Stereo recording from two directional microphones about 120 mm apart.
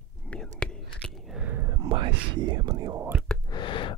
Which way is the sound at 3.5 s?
40° left (ahead or behind).